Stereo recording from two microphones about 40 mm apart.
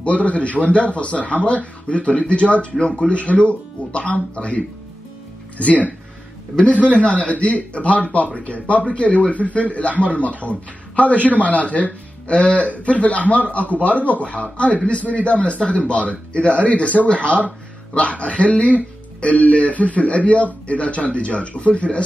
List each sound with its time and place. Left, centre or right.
0.0 s speech: left